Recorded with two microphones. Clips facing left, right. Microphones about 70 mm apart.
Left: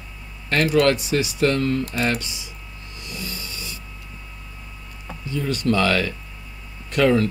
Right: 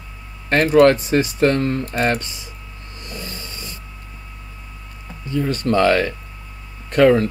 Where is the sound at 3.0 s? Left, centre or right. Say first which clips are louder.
Right 1 dB; right.